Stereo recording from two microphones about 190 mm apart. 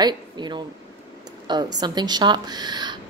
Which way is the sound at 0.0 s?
25° right (ahead or behind).